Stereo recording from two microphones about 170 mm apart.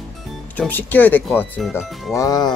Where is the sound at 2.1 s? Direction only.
20° left (ahead or behind).